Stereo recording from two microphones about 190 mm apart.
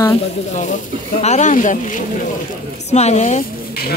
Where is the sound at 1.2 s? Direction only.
40° left (ahead or behind).